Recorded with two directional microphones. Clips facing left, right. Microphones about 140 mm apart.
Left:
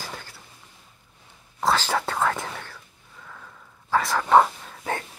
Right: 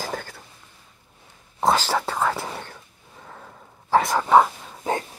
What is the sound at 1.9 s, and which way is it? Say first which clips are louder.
Whispering: right 1 dB; 5° right (ahead or behind).